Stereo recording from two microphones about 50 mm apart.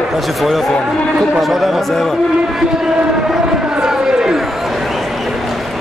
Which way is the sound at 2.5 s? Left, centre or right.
Centre.